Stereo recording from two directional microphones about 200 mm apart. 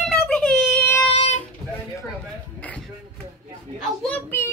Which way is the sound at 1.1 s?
35° left (ahead or behind).